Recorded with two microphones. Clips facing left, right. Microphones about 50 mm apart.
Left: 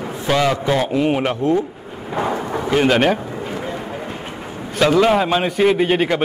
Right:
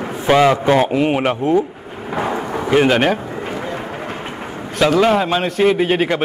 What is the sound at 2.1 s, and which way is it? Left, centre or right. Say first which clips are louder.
Thunder: right 1 dB; centre.